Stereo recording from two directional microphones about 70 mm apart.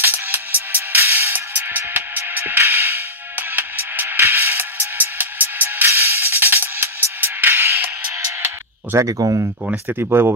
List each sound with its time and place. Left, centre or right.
0.0 s music: right
8.5 s a sound: right
9.8 s speech: right